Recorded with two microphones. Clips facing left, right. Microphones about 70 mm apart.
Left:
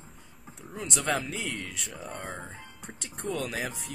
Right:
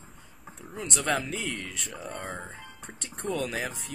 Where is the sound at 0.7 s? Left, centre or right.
Centre.